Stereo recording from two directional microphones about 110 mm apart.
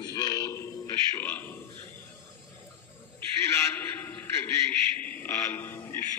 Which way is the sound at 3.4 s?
25° left (ahead or behind).